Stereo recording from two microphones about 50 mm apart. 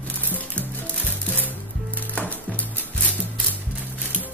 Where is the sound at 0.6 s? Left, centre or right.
Left.